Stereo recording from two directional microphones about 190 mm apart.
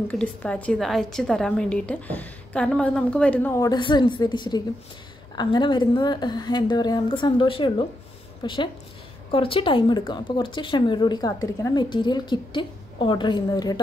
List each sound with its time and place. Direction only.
0.1 s a woman's voice: 5° left (ahead or behind)